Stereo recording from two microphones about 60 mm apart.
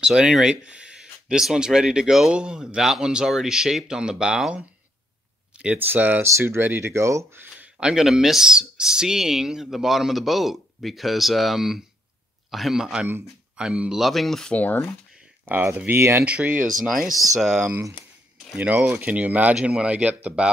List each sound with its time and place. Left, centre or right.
0.0 s speech: centre
5.8 s speech: right
6.9 s speech: right
7.6 s speech: centre
15.4 s speech: right
16.3 s speech: centre
16.8 s speech: centre
18.6 s speech: right